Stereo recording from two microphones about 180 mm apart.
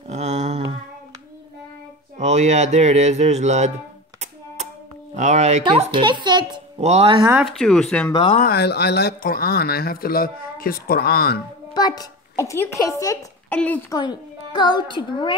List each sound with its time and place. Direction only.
0.1 s a sound: 40° right (ahead or behind)
2.1 s speech: 40° right (ahead or behind)
5.1 s speech: 40° right (ahead or behind)
7.4 s speech: centre (ahead or behind)
8.1 s a child's voice: 30° left (ahead or behind)
8.4 s speech: 60° left (ahead or behind)
11.7 s a child's voice: 20° left (ahead or behind)